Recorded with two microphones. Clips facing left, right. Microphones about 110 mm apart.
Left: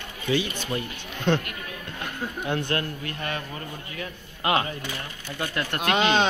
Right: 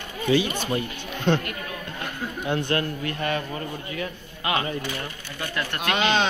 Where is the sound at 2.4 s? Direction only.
15° right (ahead or behind).